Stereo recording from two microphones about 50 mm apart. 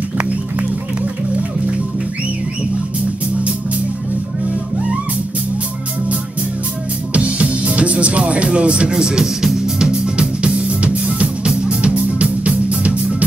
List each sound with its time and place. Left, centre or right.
7.2 s music: right